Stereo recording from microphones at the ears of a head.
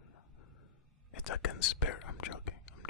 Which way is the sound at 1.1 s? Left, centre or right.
Left.